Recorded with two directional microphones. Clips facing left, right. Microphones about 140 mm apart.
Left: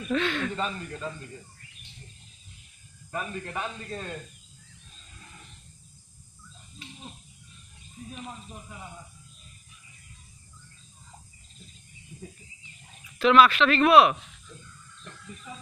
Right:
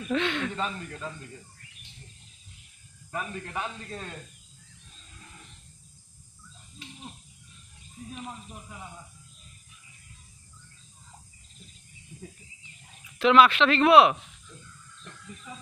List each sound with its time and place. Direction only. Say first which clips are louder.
0.1 s speech: even; 20° right (ahead or behind)
0.6 s speech: left 1 dB; centre (ahead or behind)
3.1 s speech: left 1 dB; 5° right (ahead or behind)
13.2 s speech: even; 20° right (ahead or behind)